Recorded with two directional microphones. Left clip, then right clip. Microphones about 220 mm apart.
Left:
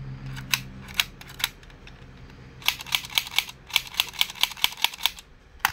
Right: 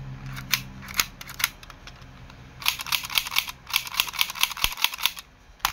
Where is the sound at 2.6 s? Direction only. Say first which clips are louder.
Even; 20° right (ahead or behind).